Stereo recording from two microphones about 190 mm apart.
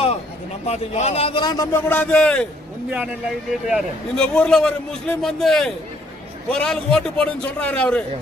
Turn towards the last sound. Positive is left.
turn(degrees=5)  # may be behind; listen again after turning